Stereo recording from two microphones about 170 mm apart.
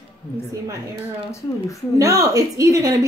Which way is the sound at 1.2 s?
20° left (ahead or behind).